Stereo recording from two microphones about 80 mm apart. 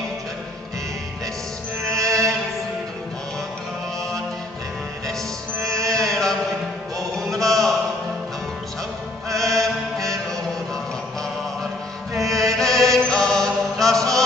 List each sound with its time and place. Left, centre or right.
2.0 s music: right
5.6 s music: right
5.9 s chant: centre
9.3 s chant: centre
12.2 s music: centre
12.5 s chant: centre